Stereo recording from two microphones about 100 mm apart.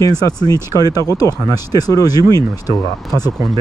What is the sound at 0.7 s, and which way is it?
Speech, 40° left (ahead or behind).